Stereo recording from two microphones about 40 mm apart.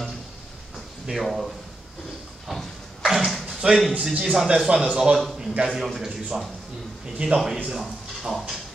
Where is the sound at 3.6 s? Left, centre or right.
Right; by 8.5 s centre.